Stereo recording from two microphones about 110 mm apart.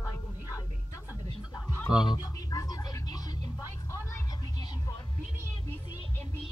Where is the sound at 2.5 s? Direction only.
35° left (ahead or behind).